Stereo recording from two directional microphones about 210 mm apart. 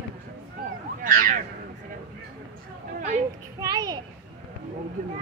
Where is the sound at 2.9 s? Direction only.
35° right (ahead or behind).